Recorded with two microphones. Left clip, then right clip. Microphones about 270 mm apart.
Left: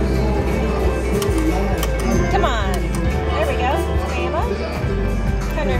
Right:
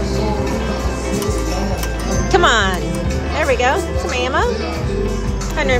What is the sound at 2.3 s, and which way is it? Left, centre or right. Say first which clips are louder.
Music: right 9 dB; right.